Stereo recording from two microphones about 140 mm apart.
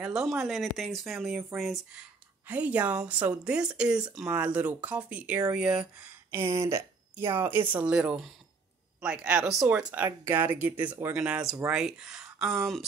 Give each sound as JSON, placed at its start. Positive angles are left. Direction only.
{"t": 0.0, "sound": "speech", "side_deg": 0}
{"t": 6.3, "sound": "speech", "side_deg": -20}